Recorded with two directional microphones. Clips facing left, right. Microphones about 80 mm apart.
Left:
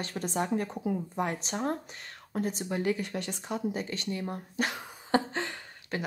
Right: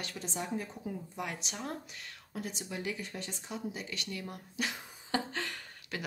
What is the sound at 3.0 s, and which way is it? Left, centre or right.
Speech, left.